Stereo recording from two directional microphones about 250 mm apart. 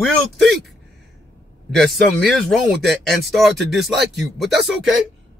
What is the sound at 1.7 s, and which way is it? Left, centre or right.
A man's voice, centre.